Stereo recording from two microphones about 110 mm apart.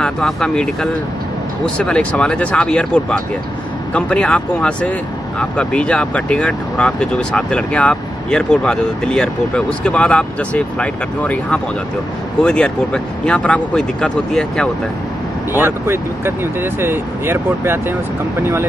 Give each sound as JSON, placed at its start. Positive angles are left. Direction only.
{"t": 0.0, "sound": "speech", "side_deg": 5}
{"t": 1.9, "sound": "speech", "side_deg": 10}
{"t": 15.5, "sound": "speech", "side_deg": -20}